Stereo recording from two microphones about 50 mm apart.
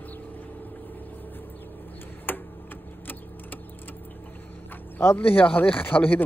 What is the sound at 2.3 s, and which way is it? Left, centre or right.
Tick-tock, left.